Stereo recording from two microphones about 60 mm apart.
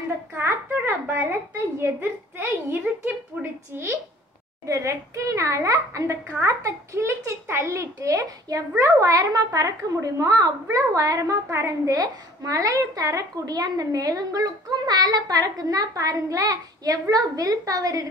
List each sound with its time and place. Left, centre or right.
0.4 s a sound: right
1.8 s a woman's voice: right
3.3 s a sound: right
3.7 s a woman's voice: right
4.6 s a woman's voice: right
11.6 s a woman's voice: right